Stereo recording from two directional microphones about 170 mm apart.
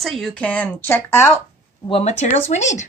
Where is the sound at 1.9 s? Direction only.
40° left (ahead or behind).